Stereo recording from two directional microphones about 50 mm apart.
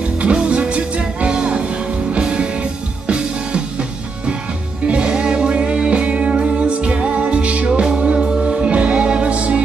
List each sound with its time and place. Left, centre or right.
0.2 s music: right
4.8 s music: centre